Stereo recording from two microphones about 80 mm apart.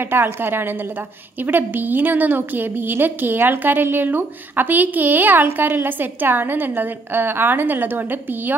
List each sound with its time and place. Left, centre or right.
0.0 s a woman's voice: right